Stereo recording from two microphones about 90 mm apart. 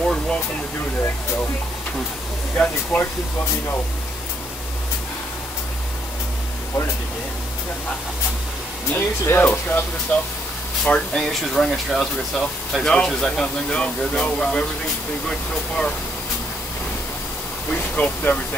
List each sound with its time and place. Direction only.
0.0 s a sound: 5° left (ahead or behind)
2.5 s speech: 20° left (ahead or behind)
8.9 s speech: 30° left (ahead or behind)
9.4 s speech: 20° left (ahead or behind)
10.8 s speech: 5° left (ahead or behind)
17.7 s speech: 20° left (ahead or behind)